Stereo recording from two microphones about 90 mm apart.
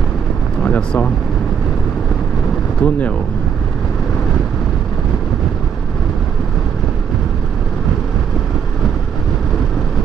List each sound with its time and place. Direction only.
0.7 s vehicle: 15° left (ahead or behind)
2.8 s speech: 20° left (ahead or behind)